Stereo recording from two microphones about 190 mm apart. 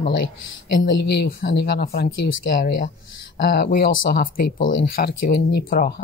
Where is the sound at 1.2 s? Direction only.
60° left (ahead or behind).